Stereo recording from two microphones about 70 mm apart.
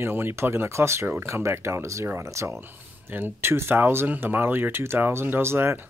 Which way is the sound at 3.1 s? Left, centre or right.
Right.